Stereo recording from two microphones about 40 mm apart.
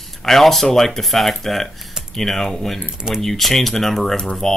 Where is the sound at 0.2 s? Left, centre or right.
Centre.